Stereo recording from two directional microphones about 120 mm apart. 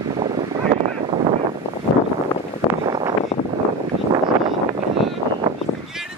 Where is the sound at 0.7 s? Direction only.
65° right (ahead or behind).